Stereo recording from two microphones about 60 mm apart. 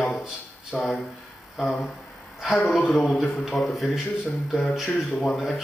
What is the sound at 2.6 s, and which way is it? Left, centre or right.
Speech, left.